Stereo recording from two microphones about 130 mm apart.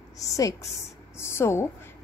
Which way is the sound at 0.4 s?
25° left (ahead or behind).